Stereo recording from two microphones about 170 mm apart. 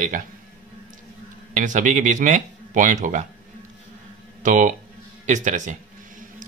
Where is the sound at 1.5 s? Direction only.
50° right (ahead or behind).